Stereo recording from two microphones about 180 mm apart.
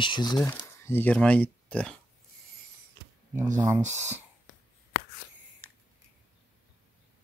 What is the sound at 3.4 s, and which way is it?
Speech, 15° right (ahead or behind).